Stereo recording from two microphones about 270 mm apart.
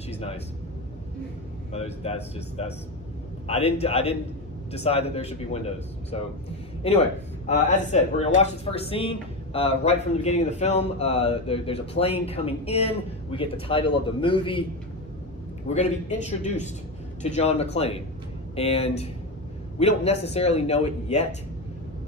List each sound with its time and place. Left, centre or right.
0.1 s speech: left
1.7 s a man's voice: left
7.4 s speech: left
15.7 s speech: left